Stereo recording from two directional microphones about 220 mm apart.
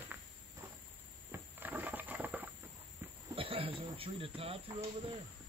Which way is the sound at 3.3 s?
25° right (ahead or behind).